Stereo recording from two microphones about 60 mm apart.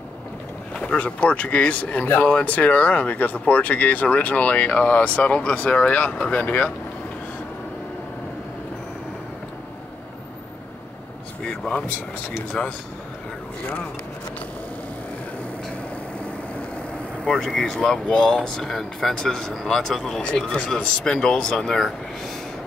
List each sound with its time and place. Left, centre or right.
0.8 s speech: left
11.4 s vehicle: centre
12.6 s speech: centre
17.2 s speech: centre